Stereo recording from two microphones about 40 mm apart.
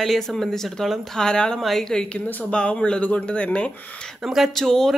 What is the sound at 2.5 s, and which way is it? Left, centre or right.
Speech, left.